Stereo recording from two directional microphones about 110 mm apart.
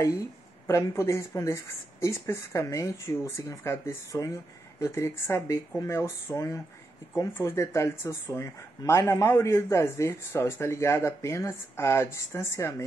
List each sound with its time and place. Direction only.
0.7 s speech: 25° left (ahead or behind)